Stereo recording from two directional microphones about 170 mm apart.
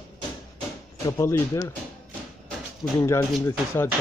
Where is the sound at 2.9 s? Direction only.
20° left (ahead or behind).